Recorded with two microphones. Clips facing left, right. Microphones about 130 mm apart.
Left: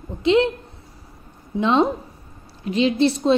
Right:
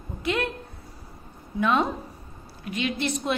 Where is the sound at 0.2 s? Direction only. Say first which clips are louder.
Left 10 dB; 25° left (ahead or behind).